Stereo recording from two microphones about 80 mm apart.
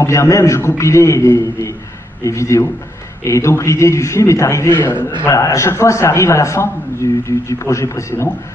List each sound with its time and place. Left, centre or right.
0.0 s a man's voice: left